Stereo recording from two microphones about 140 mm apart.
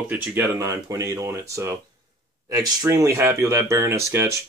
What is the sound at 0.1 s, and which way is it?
Speech, 15° right (ahead or behind).